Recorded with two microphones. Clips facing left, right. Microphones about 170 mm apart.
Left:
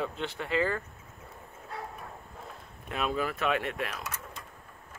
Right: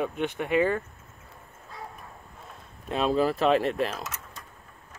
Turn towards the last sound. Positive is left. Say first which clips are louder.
# right 7 dB
turn(degrees=-35)  # may be behind; listen again after turning